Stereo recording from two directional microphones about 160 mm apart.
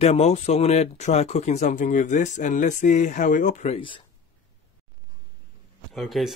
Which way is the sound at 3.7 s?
30° left (ahead or behind).